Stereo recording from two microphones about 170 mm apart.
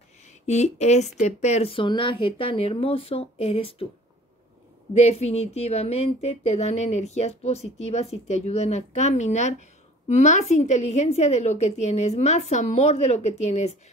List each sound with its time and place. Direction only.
0.5 s a woman's voice: 40° left (ahead or behind)
4.9 s a woman's voice: 40° left (ahead or behind)